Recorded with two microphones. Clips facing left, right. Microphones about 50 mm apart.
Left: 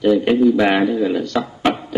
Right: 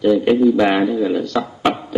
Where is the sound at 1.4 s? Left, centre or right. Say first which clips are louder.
Even; centre.